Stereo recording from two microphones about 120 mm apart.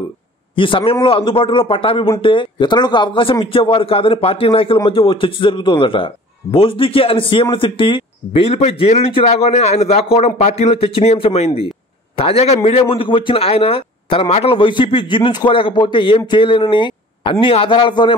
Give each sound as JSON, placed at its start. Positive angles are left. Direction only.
{"t": 0.6, "sound": "speech", "side_deg": 45}